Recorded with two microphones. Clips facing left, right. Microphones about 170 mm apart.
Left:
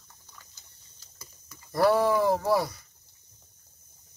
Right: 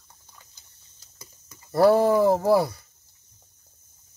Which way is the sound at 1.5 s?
25° right (ahead or behind).